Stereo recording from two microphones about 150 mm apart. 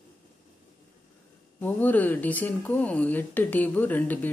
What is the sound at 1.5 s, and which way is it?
Speech, 10° left (ahead or behind).